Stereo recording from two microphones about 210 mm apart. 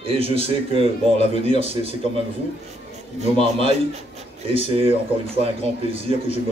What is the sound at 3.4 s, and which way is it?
A man's voice, 25° right (ahead or behind).